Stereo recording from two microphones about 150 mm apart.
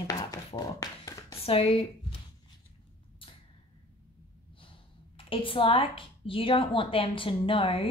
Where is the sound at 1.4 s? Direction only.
40° left (ahead or behind).